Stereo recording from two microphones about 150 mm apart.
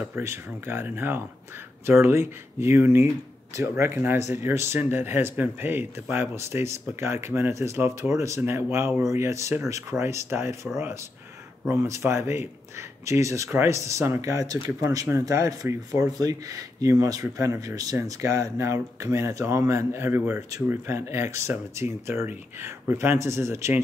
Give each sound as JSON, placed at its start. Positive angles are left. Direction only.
{"t": 0.0, "sound": "speech", "side_deg": -15}